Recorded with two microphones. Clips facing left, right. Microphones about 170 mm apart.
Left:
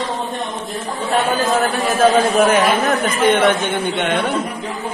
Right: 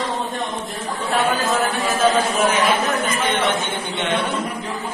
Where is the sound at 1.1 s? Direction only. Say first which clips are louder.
Left 3 dB; 35° left (ahead or behind).